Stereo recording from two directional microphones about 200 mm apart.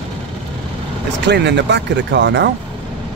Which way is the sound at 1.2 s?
60° right (ahead or behind).